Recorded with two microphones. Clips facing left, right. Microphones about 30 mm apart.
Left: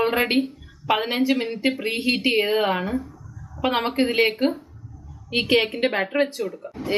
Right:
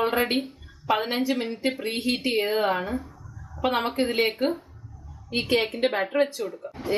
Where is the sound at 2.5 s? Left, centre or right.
Left.